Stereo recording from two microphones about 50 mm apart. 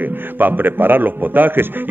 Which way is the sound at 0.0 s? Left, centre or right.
Right.